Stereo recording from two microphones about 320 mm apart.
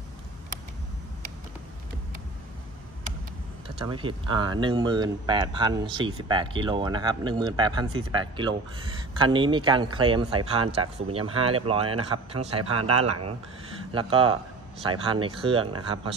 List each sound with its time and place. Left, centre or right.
3.6 s speech: centre
13.9 s speech: centre